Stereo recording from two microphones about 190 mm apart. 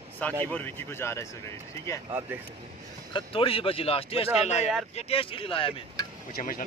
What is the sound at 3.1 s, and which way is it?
Speech, 25° left (ahead or behind).